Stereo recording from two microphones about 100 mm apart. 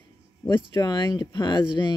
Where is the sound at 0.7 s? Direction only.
40° left (ahead or behind).